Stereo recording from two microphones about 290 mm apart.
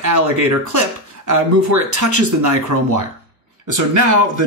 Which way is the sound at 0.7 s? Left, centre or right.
Right.